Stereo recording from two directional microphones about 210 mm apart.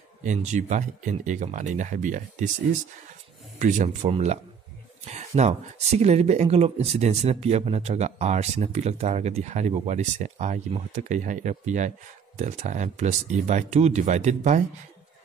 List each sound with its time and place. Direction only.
0.2 s speech: 35° right (ahead or behind)
3.5 s speech: 35° right (ahead or behind)